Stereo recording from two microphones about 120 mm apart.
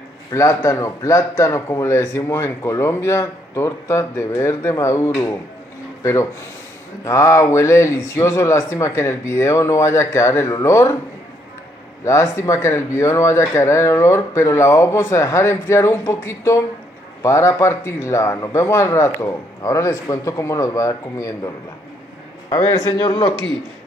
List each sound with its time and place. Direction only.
0.3 s a man's voice: 25° left (ahead or behind)
7.1 s a man's voice: 25° left (ahead or behind)
12.0 s a man's voice: 25° left (ahead or behind)
22.8 s speech: 30° left (ahead or behind)